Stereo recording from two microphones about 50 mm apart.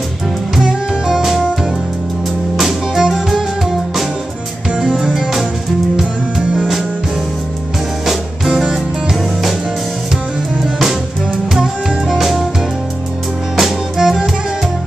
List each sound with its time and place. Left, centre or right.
0.7 s music: centre
2.5 s music: centre
4.7 s music: centre
6.4 s music: centre
8.5 s music: centre
11.5 s music: centre
13.6 s music: centre